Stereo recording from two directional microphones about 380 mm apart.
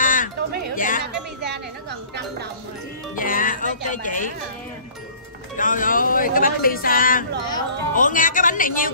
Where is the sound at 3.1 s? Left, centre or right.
Left.